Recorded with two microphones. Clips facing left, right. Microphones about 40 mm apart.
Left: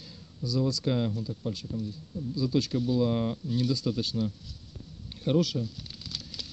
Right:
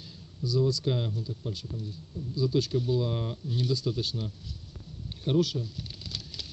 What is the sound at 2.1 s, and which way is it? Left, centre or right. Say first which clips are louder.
Speech: left 3 dB; right.